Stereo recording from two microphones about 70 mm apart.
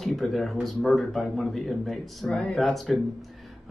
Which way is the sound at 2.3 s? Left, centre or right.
Centre.